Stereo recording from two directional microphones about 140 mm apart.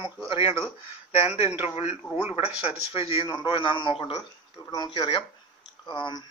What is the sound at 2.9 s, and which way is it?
A man's voice, 45° left (ahead or behind).